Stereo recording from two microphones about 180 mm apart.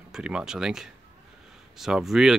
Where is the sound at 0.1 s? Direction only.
5° right (ahead or behind).